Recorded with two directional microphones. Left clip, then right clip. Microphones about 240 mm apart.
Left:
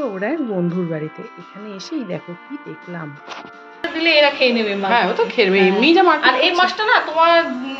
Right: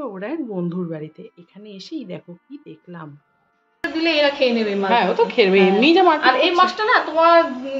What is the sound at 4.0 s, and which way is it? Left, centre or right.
Speech, right.